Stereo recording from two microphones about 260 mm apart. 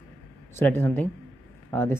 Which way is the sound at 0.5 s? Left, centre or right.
Centre.